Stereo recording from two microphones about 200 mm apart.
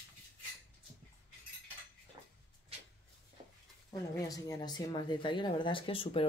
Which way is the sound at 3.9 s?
15° left (ahead or behind).